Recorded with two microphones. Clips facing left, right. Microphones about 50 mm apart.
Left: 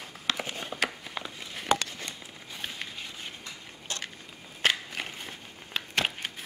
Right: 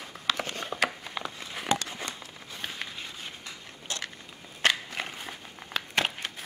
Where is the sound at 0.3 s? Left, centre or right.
Centre.